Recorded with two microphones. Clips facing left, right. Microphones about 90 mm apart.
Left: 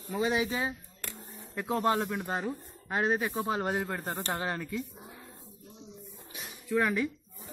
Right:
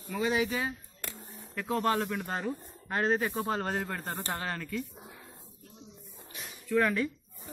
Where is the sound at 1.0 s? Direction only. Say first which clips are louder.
Even; centre (ahead or behind).